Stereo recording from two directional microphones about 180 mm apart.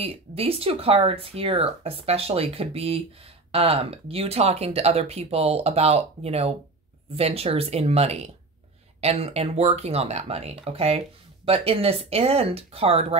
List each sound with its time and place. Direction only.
0.0 s speech: 30° right (ahead or behind)